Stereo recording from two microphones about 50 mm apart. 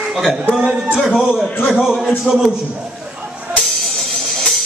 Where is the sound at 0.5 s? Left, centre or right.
Centre.